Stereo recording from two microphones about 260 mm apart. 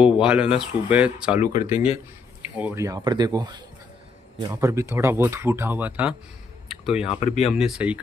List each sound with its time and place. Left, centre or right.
0.0 s speech: centre
1.7 s speech: left
2.5 s speech: centre
6.7 s a sound: centre
7.1 s speech: left
7.5 s speech: centre